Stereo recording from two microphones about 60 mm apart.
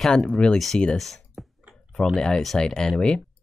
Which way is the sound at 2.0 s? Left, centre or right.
Centre.